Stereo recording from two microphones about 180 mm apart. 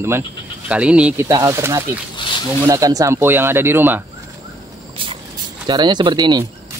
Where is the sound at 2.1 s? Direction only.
25° left (ahead or behind).